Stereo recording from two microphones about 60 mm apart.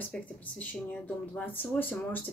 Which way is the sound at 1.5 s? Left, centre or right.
Left.